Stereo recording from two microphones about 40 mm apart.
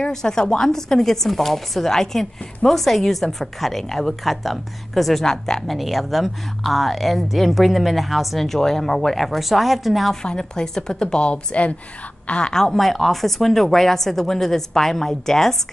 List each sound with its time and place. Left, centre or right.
0.0 s a woman's voice: centre
10.2 s a woman's voice: centre
12.5 s speech: centre